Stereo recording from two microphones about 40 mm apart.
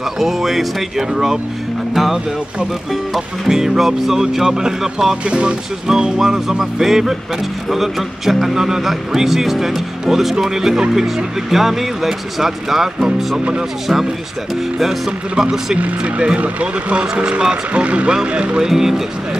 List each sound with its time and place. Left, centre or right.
0.2 s speech: centre
3.4 s speech: centre
5.2 s speech: right; by 14.0 s centre
15.0 s speech: centre
15.8 s speech: right
18.6 s speech: centre